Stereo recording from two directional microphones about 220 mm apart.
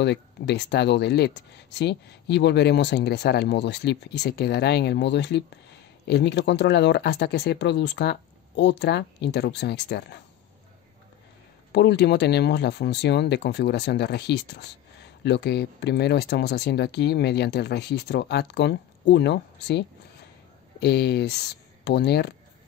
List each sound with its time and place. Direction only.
0.0 s speech: 50° left (ahead or behind)
11.7 s speech: 50° left (ahead or behind)